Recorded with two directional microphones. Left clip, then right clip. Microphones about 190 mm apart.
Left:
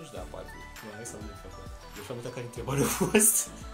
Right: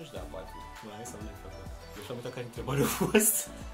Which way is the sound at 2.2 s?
15° left (ahead or behind).